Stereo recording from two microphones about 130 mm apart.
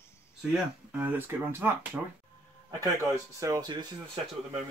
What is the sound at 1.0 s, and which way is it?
Speech, 15° right (ahead or behind).